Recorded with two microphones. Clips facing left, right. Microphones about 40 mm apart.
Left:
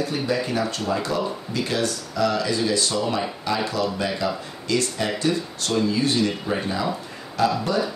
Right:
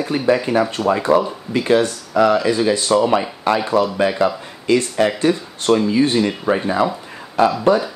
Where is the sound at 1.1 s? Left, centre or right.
Right.